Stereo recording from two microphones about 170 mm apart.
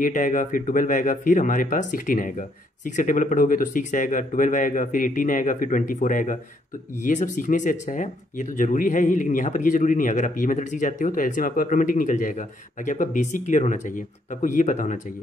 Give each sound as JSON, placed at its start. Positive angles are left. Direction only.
{"t": 0.0, "sound": "speech", "side_deg": 50}